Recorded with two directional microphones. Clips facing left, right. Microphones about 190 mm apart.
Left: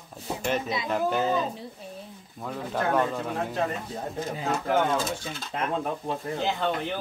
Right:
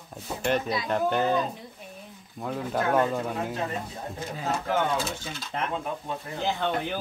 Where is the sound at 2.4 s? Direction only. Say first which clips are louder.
Right 1 dB; 5° right (ahead or behind).